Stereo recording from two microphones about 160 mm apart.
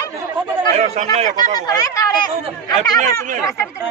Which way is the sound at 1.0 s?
45° right (ahead or behind).